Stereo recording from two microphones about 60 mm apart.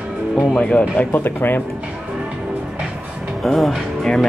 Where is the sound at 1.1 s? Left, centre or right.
Left.